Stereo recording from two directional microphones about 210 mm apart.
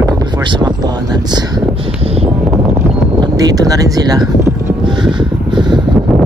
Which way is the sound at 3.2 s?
20° right (ahead or behind).